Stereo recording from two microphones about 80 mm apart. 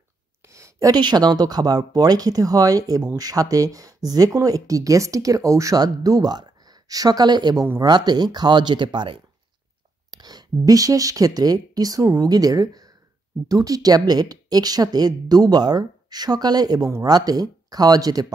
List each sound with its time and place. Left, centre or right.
0.5 s a sound: right
0.9 s speech: right
10.1 s a woman's voice: right